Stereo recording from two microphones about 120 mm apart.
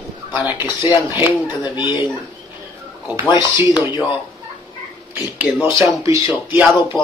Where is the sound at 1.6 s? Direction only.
40° left (ahead or behind).